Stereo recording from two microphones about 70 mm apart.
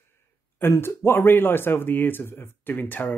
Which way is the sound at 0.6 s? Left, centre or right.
Left.